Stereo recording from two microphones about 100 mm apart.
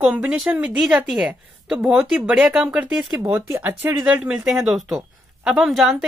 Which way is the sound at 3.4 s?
25° right (ahead or behind).